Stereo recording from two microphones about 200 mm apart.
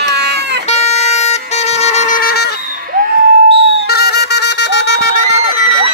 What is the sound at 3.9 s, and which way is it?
Music, 55° left (ahead or behind).